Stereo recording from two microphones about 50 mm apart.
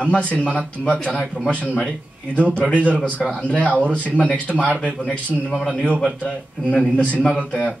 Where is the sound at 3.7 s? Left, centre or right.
Right.